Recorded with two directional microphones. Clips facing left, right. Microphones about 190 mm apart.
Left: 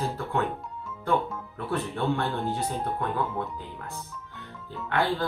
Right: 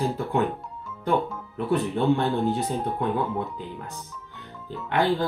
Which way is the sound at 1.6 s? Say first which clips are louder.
Right 6 dB; 20° right (ahead or behind).